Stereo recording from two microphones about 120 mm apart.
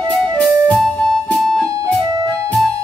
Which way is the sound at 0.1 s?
10° left (ahead or behind).